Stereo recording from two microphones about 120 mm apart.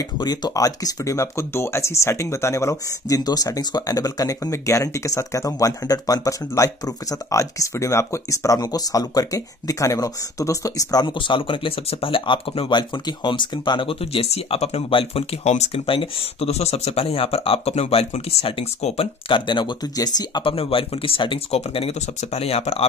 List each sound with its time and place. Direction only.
0.2 s speech: 35° left (ahead or behind); by 15.2 s 50° left (ahead or behind)
15.4 s speech: 70° left (ahead or behind); by 20.5 s 35° left (ahead or behind)
20.5 s speech: 50° left (ahead or behind)
21.5 s speech: 55° left (ahead or behind)